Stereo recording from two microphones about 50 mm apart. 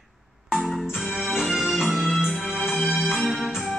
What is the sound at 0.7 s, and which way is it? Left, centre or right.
Music, centre.